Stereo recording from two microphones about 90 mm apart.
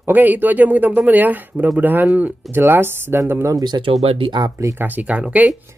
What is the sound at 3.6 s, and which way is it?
Speech, 50° right (ahead or behind).